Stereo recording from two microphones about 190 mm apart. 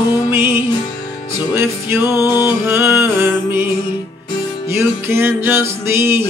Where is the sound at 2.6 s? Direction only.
10° right (ahead or behind).